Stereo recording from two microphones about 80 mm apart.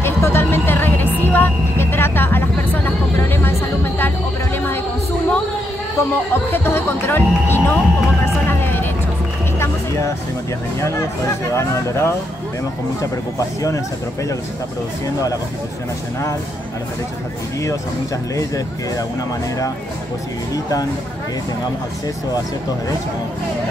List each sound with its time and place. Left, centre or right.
0.0 s music: left
6.3 s speech: left
8.5 s a sound: left
9.6 s vehicle: left
11.5 s speech: left